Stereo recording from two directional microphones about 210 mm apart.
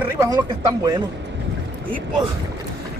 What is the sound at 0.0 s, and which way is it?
Speech, 15° right (ahead or behind).